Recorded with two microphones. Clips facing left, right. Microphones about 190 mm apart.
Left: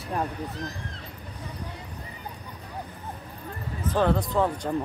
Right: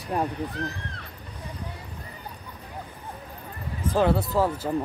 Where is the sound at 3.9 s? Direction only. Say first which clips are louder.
Right 1 dB; 10° right (ahead or behind).